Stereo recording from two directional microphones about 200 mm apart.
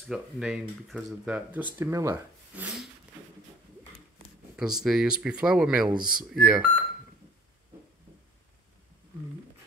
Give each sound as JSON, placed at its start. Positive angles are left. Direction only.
{"t": 0.1, "sound": "speech", "side_deg": -5}
{"t": 4.6, "sound": "speech", "side_deg": -5}